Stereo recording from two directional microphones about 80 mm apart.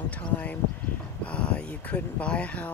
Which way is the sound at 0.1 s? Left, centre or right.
Centre.